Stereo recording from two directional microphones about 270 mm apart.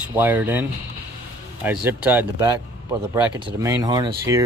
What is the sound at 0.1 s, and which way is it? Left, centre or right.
Speech, centre.